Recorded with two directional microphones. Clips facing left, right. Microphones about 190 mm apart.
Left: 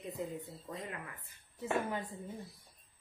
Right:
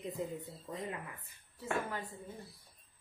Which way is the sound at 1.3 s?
20° left (ahead or behind).